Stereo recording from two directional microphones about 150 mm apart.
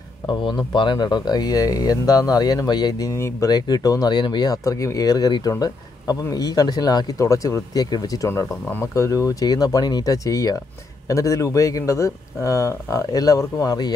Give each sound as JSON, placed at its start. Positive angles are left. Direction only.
{"t": 0.3, "sound": "speech", "side_deg": 30}